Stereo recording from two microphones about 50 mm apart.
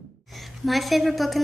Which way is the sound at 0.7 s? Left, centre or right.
Centre.